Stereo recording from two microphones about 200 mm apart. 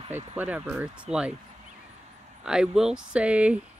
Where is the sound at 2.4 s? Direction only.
5° right (ahead or behind).